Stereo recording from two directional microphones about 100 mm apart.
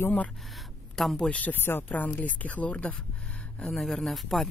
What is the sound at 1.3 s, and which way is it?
Speech, 15° left (ahead or behind).